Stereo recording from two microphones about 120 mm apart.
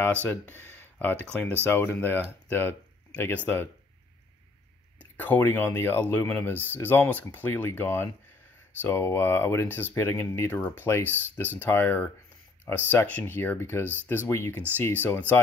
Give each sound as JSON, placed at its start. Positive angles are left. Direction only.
{"t": 0.0, "sound": "speech", "side_deg": 15}
{"t": 5.1, "sound": "speech", "side_deg": 15}